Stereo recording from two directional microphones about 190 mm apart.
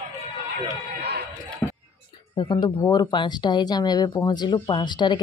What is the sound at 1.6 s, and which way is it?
Whispering, 10° left (ahead or behind).